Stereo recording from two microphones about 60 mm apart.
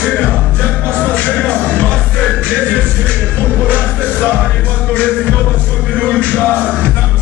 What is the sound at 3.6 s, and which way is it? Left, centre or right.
Music, left.